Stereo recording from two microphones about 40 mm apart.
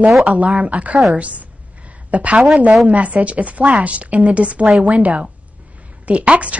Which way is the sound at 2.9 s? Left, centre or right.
Right.